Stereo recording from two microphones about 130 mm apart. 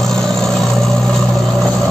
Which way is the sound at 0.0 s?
5° left (ahead or behind).